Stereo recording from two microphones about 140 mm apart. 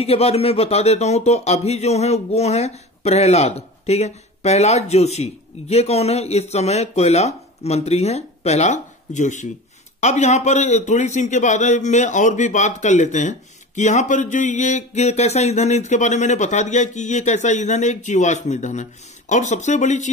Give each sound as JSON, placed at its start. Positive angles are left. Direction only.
{"t": 0.0, "sound": "a man's voice", "side_deg": 45}